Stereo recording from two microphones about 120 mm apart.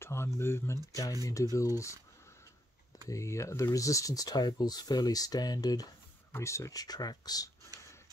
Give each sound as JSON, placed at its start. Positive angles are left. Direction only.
{"t": 0.0, "sound": "speech", "side_deg": 20}
{"t": 3.1, "sound": "speech", "side_deg": 25}